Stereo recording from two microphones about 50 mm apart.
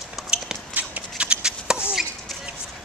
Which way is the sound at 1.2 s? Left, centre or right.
Centre.